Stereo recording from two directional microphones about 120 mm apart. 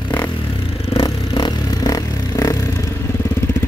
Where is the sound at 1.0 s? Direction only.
40° left (ahead or behind).